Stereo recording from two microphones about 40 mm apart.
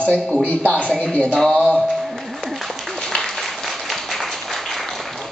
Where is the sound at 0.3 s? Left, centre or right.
Left.